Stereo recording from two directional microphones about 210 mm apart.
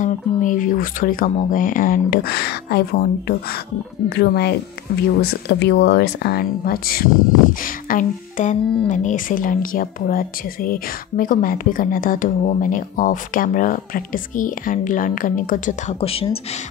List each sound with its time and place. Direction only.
0.0 s speech: 40° left (ahead or behind)